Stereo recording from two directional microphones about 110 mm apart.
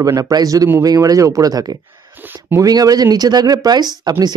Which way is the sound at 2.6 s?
35° right (ahead or behind).